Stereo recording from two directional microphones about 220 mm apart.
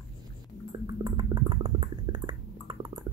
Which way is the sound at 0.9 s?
20° right (ahead or behind).